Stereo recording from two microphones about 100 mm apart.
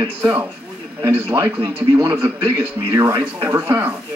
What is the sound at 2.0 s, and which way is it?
Speech, 20° right (ahead or behind).